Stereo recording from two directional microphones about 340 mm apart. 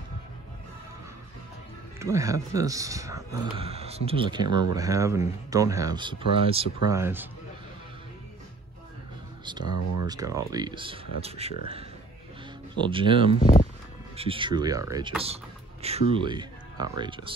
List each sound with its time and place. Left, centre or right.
2.0 s speech: centre
9.4 s speech: centre
12.7 s speech: centre
13.4 s speech: left
14.1 s speech: centre